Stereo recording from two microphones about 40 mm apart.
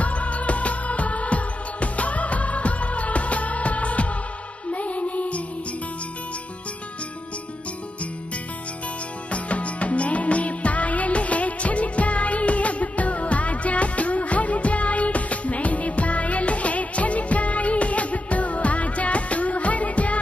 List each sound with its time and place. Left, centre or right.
0.0 s music: left
9.3 s music: left